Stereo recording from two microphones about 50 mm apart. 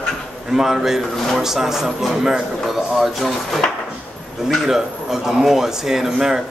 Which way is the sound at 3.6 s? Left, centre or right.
Centre.